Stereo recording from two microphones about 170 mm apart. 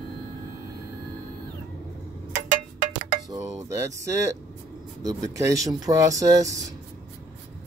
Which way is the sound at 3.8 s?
15° right (ahead or behind).